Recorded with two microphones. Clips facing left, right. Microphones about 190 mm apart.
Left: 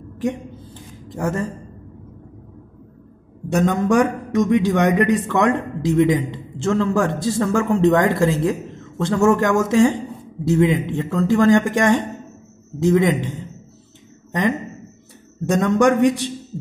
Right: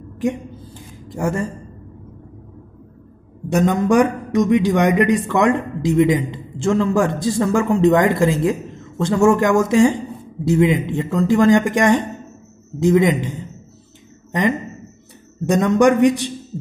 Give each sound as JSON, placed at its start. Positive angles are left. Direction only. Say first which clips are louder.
{"t": 1.0, "sound": "speech", "louder": "right 2 dB", "side_deg": -10}
{"t": 3.4, "sound": "a man's voice", "louder": "right 2 dB", "side_deg": -15}
{"t": 15.4, "sound": "a man's voice", "louder": "right 2 dB", "side_deg": -15}